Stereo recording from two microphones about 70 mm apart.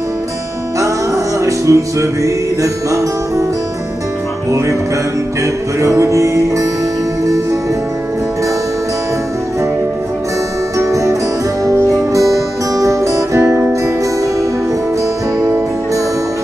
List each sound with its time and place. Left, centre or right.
0.7 s music: right
5.8 s music: right
10.8 s music: right